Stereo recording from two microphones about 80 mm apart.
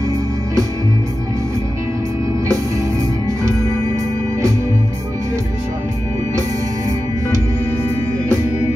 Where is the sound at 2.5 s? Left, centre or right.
Right.